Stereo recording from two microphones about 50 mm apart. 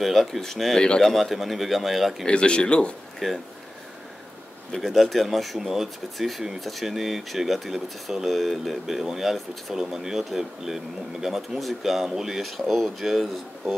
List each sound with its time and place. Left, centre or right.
0.0 s speech: centre
1.1 s speech: centre
2.2 s speech: left
3.2 s speech: centre
4.7 s speech: centre